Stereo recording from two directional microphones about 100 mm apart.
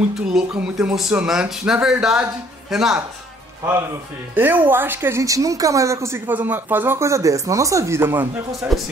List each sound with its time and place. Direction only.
0.1 s speech: 5° right (ahead or behind)
4.4 s a woman's voice: 20° right (ahead or behind)
5.2 s speech: 35° right (ahead or behind)
8.5 s speech: centre (ahead or behind)